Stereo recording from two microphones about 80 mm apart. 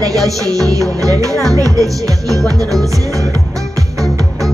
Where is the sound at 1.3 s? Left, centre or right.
Centre.